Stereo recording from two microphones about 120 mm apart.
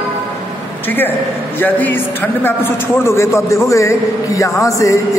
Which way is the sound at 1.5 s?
15° left (ahead or behind).